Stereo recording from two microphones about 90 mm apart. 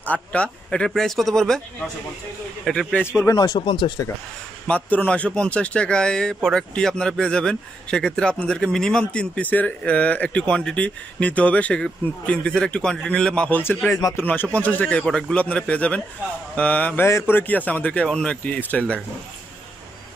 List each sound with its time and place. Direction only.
0.0 s speech: 15° left (ahead or behind)
2.6 s a man's voice: 5° left (ahead or behind)
2.9 s speech: 25° left (ahead or behind)
3.3 s speech: 50° left (ahead or behind)
4.6 s speech: 15° left (ahead or behind)